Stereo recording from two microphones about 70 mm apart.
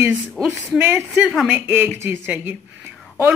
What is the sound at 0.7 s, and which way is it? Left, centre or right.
Speech, right.